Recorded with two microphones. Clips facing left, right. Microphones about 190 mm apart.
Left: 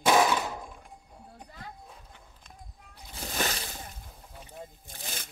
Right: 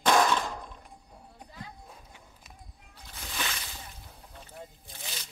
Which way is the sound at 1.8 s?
5° right (ahead or behind).